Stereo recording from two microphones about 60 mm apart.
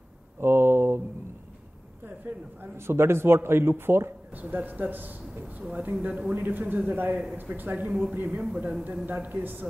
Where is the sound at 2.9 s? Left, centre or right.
Right.